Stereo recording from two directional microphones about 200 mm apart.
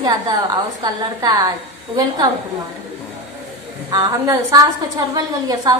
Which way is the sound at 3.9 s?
20° right (ahead or behind).